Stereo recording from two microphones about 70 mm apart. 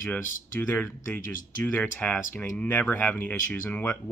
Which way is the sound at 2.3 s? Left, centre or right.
Left.